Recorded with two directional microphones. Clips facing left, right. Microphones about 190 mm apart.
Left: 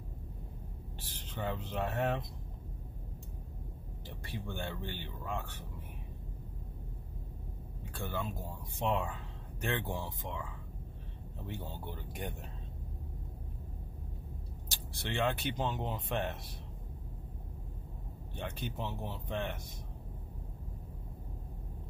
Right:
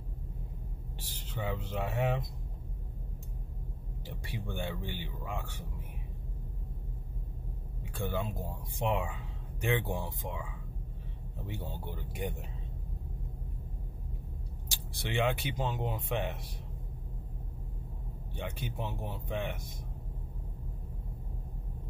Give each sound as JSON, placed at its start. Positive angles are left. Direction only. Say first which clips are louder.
{"t": 1.3, "sound": "speech", "louder": "right 1 dB", "side_deg": -10}
{"t": 4.2, "sound": "speech", "louder": "right 2 dB", "side_deg": -15}
{"t": 7.9, "sound": "speech", "louder": "right 4 dB", "side_deg": -15}
{"t": 14.7, "sound": "speech", "louder": "right 2 dB", "side_deg": -15}
{"t": 18.3, "sound": "speech", "louder": "right 1 dB", "side_deg": -10}